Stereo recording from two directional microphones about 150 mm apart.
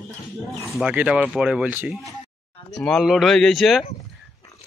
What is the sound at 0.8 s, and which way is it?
Speech, 10° right (ahead or behind).